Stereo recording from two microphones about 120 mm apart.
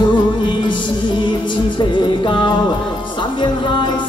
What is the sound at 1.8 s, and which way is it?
Music, 40° left (ahead or behind).